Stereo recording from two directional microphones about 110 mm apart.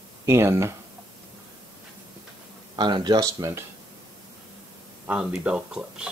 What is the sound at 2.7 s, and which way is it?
Speech, 45° right (ahead or behind).